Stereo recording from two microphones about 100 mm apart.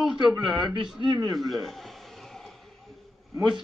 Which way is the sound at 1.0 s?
45° right (ahead or behind).